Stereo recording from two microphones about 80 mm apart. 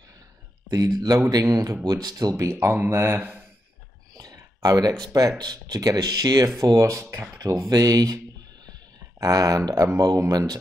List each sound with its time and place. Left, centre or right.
0.7 s speech: right
2.4 s speech: right
4.1 s a sound: right
5.0 s speech: right
9.2 s speech: right